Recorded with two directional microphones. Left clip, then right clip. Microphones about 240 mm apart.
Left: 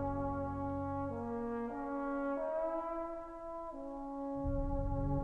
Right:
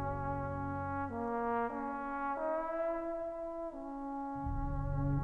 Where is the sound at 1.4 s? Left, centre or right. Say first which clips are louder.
Right 6 dB; right.